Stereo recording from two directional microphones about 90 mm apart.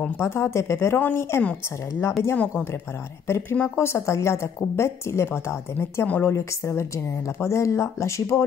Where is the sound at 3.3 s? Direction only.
30° left (ahead or behind).